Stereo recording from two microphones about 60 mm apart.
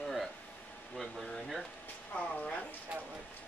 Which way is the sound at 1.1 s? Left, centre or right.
Centre.